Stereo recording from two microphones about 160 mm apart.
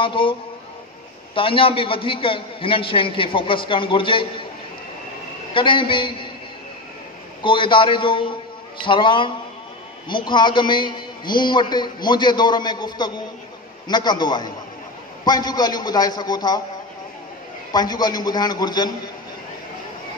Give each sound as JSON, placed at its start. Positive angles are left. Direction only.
{"t": 0.0, "sound": "a man's voice", "side_deg": 35}
{"t": 5.5, "sound": "a man's voice", "side_deg": 30}
{"t": 7.4, "sound": "a man's voice", "side_deg": 30}
{"t": 17.7, "sound": "a man's voice", "side_deg": 25}